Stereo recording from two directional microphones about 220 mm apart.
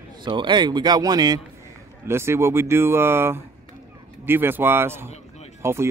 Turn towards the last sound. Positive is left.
turn(degrees=-10)  # may be behind; listen again after turning